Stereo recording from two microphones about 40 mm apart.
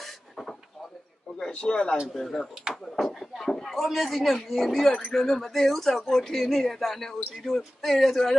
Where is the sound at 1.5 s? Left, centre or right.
Left.